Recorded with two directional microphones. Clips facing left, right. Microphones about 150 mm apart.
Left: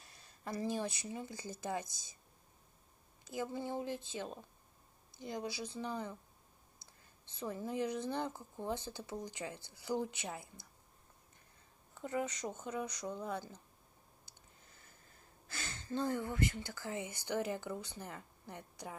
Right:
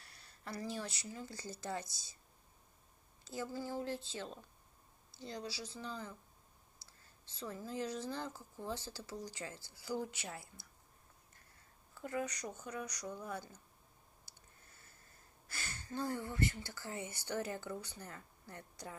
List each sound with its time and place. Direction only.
0.0 s speech: 20° left (ahead or behind)
3.3 s speech: 20° left (ahead or behind)
11.9 s speech: 20° left (ahead or behind)
15.4 s speech: 20° left (ahead or behind)